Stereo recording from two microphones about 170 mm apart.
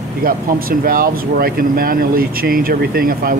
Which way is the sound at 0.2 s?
55° right (ahead or behind).